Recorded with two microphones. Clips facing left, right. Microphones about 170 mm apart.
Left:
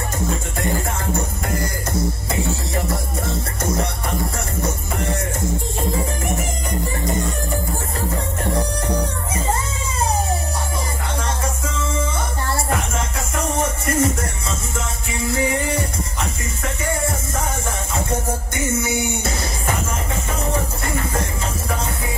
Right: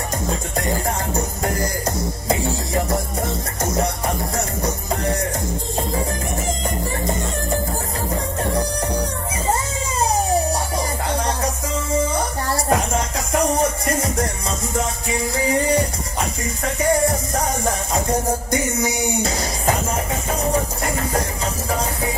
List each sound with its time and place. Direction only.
13.3 s music: 35° right (ahead or behind)